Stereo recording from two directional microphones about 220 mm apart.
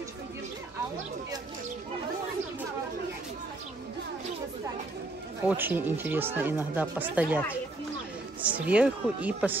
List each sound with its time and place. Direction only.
5.5 s speech: 10° right (ahead or behind)